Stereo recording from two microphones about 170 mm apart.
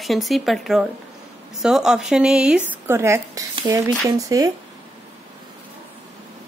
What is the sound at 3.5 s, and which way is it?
Speech, 30° right (ahead or behind).